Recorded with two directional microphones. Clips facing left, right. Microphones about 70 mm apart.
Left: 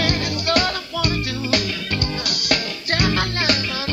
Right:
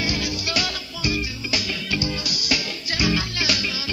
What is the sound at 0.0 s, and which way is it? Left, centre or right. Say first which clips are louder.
Music: left 4 dB; left.